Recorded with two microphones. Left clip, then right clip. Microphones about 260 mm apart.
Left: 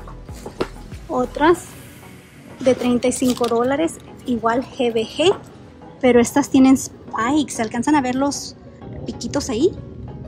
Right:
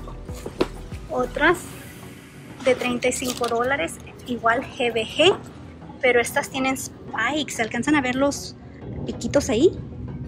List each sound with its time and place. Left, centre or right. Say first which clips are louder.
1.1 s a woman's voice: left 3 dB; centre
2.6 s a woman's voice: left 3 dB; centre
6.0 s a woman's voice: left 4 dB; left